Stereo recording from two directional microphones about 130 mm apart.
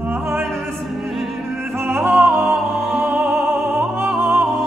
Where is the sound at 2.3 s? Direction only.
Centre (ahead or behind).